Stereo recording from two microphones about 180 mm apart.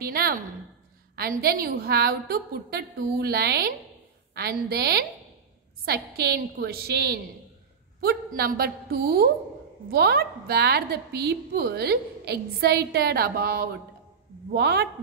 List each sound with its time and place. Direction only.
0.0 s a woman's voice: 60° right (ahead or behind)